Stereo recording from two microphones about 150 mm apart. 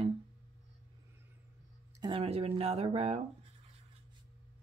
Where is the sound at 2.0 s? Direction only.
35° right (ahead or behind).